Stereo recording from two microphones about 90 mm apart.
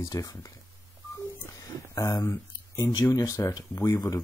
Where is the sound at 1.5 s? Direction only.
35° left (ahead or behind).